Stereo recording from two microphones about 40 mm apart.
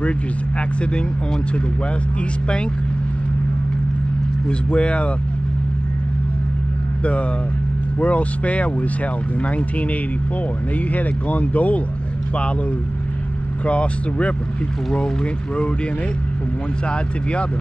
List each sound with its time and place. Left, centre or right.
4.5 s speech: left
8.0 s speech: left
11.0 s speech: left
13.7 s speech: left